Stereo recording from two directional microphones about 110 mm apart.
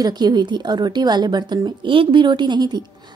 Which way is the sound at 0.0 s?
40° right (ahead or behind).